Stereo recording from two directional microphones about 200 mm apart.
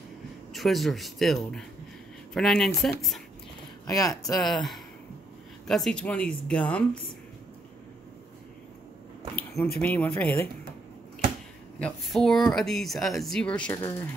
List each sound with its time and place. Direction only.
0.5 s speech: centre (ahead or behind)
3.8 s speech: 15° left (ahead or behind)
4.4 s speech: centre (ahead or behind)
9.3 s speech: 10° left (ahead or behind)
11.8 s speech: centre (ahead or behind)